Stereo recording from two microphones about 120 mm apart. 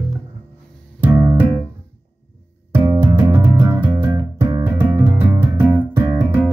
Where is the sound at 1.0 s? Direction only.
15° right (ahead or behind).